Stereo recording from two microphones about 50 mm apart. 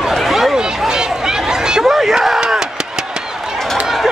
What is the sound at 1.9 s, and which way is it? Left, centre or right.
Crowd, centre.